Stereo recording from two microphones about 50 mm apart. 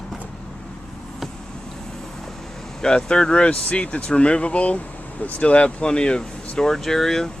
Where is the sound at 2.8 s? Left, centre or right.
Centre.